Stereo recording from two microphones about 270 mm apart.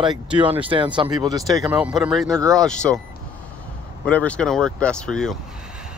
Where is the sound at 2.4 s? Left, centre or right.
Centre.